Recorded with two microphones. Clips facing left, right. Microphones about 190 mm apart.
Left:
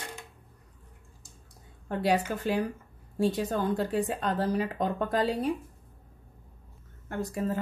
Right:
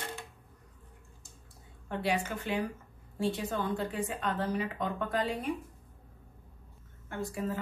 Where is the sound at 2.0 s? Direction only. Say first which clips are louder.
Left 6 dB; 40° left (ahead or behind).